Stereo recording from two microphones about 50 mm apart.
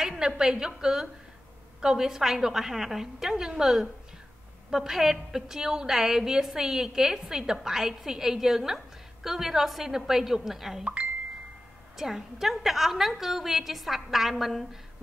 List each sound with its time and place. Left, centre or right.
0.0 s a sound: centre
0.4 s a woman's voice: centre
10.8 s speech: right
12.0 s a woman's voice: centre